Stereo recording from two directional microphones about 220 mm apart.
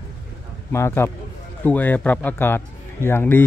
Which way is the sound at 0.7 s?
10° left (ahead or behind).